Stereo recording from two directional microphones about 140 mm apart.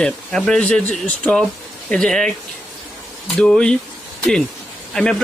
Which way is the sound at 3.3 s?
5° left (ahead or behind).